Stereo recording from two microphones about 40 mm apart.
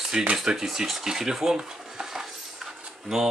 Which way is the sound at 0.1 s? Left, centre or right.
Centre.